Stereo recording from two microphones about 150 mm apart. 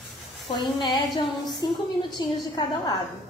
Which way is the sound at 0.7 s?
30° left (ahead or behind).